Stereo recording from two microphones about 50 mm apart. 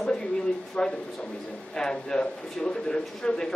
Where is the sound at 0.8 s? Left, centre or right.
Left.